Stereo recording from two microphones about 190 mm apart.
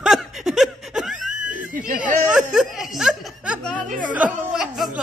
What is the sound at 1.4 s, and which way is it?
Screaming, 45° right (ahead or behind).